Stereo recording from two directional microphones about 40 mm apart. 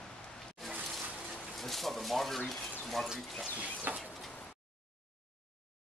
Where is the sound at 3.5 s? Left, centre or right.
Right.